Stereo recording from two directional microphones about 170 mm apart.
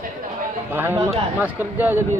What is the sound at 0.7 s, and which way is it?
A man's voice, 15° right (ahead or behind).